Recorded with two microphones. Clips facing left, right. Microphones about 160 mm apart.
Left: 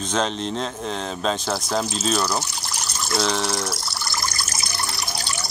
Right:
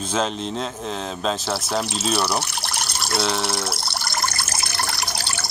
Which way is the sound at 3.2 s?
5° right (ahead or behind).